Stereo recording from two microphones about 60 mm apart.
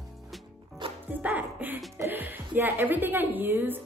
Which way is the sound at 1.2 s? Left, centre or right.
Right.